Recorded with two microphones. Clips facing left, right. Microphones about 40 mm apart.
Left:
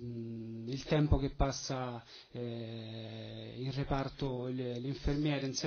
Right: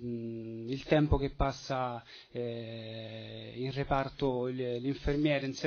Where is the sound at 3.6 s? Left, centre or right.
Right.